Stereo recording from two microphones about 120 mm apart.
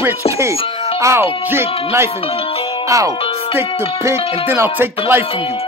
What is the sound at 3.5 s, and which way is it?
Speech, 20° right (ahead or behind).